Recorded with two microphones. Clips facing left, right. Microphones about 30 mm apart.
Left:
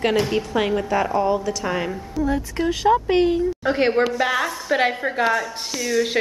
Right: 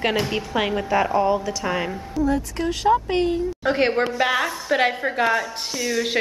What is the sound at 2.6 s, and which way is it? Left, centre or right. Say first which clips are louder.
Speech: left 2 dB; centre.